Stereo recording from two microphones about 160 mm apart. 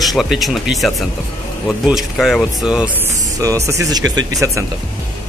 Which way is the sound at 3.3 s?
20° right (ahead or behind).